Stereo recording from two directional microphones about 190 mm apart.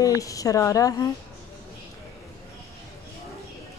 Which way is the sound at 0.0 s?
20° left (ahead or behind).